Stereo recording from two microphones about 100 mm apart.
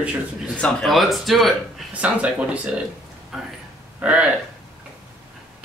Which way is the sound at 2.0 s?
15° right (ahead or behind).